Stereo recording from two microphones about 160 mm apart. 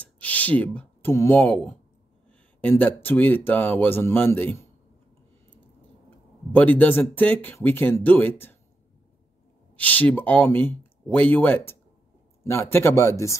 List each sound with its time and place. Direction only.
0.0 s speech: 10° left (ahead or behind)
6.0 s speech: 10° left (ahead or behind)
9.8 s speech: 10° left (ahead or behind)